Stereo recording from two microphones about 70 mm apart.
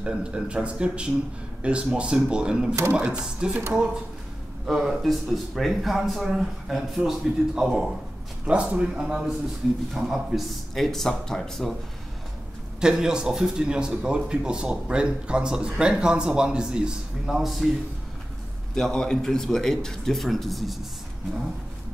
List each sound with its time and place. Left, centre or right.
0.0 s speech: centre
2.7 s speech: right
3.0 s speech: centre
4.6 s speech: centre
12.8 s speech: centre
18.8 s speech: centre